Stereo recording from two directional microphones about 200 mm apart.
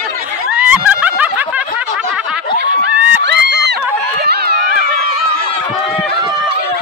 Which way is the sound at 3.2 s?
60° right (ahead or behind).